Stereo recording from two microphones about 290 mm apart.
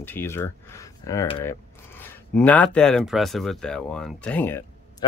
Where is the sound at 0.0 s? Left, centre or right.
Centre.